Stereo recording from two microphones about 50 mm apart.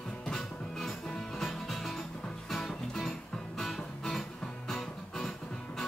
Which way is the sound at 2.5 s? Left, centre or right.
Centre.